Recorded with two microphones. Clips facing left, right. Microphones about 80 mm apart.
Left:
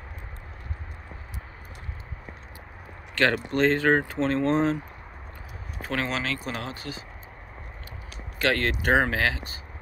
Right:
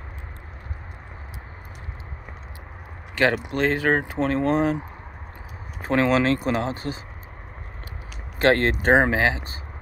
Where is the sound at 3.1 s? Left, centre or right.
Centre.